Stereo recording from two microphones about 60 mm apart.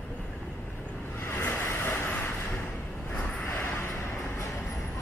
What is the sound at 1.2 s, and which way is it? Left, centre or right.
Vehicle, left.